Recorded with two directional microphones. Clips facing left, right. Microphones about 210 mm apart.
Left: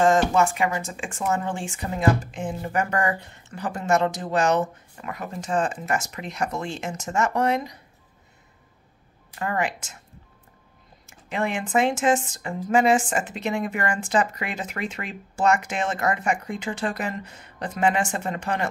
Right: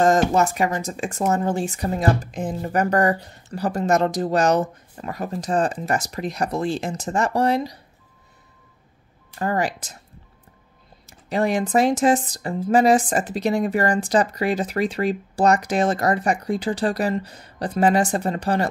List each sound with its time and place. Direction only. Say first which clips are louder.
0.0 s speech: right 2 dB; 40° right (ahead or behind)
9.4 s speech: right 3 dB; 35° right (ahead or behind)
11.1 s speech: right 5 dB; 35° right (ahead or behind)